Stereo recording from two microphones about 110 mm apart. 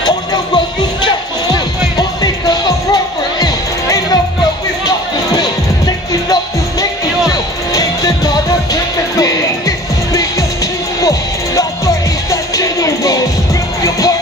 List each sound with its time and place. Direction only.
1.0 s music: 35° left (ahead or behind)